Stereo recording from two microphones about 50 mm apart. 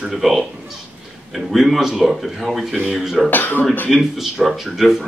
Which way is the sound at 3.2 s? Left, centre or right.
Left.